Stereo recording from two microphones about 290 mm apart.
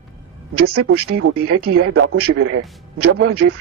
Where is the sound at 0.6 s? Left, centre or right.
Right.